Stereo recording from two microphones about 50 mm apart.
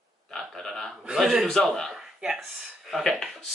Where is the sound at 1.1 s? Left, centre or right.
Centre.